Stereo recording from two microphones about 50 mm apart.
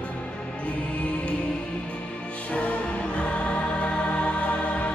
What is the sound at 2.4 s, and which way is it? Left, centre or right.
Music, left.